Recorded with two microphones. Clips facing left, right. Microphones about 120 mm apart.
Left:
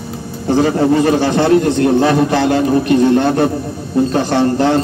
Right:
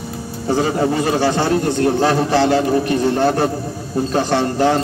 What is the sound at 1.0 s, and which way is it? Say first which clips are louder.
A man's voice: left 4 dB; 55° left (ahead or behind).